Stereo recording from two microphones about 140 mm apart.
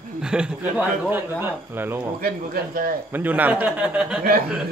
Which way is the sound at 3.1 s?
10° right (ahead or behind).